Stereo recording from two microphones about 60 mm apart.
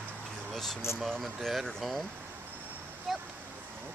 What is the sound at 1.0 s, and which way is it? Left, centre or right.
Speech, centre.